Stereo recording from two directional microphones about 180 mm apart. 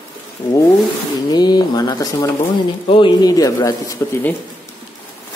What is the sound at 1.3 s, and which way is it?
Speech, 25° left (ahead or behind).